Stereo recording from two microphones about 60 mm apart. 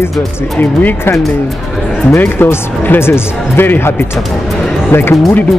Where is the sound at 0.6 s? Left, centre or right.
Left.